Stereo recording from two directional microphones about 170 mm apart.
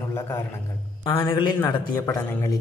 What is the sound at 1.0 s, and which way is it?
Speech, 30° left (ahead or behind).